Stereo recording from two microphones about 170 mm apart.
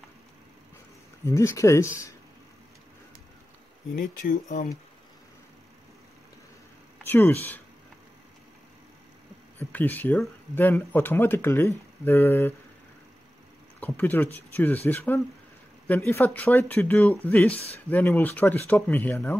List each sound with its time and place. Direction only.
1.2 s speech: 15° left (ahead or behind)
3.9 s speech: 55° left (ahead or behind)
7.1 s speech: 10° left (ahead or behind)
9.7 s speech: 10° left (ahead or behind)
13.7 s speech: 10° left (ahead or behind)